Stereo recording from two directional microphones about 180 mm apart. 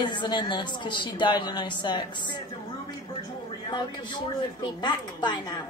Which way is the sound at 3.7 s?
25° left (ahead or behind).